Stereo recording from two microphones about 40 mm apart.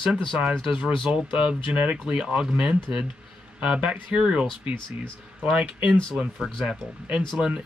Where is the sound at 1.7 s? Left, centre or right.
Right.